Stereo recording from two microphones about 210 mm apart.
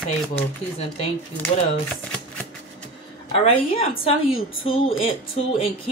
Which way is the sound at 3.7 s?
25° left (ahead or behind).